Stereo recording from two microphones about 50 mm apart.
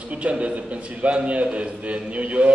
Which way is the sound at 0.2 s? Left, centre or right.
Right.